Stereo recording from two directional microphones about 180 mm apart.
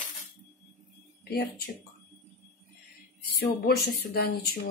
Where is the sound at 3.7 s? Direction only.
60° left (ahead or behind).